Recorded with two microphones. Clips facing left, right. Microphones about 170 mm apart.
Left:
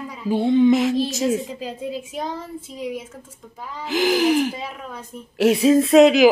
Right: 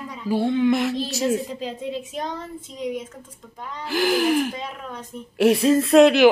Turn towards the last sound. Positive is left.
turn(degrees=0)  # may be behind; listen again after turning